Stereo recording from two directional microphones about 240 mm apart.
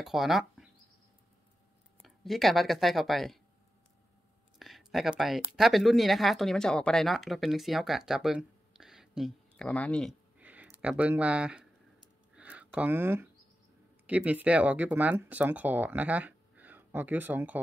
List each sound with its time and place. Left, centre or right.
0.0 s speech: centre
2.0 s speech: centre
4.6 s speech: centre
10.4 s a sound: centre
10.8 s speech: centre
12.4 s a sound: centre
14.0 s speech: centre